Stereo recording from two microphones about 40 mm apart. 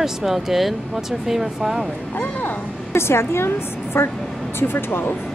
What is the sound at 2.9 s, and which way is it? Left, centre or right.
A woman's voice, left.